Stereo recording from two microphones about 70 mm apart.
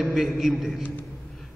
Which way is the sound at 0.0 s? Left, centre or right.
Centre.